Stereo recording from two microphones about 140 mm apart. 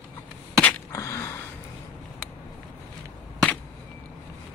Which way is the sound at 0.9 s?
20° left (ahead or behind).